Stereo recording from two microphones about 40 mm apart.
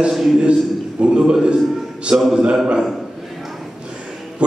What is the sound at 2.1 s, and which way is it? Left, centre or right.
Speech, centre.